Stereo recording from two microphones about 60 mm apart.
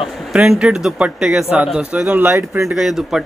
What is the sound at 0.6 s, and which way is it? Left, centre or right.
Speech, centre.